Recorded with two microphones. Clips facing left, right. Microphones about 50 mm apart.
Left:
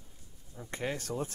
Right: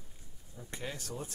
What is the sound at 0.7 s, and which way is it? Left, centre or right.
Speech, left.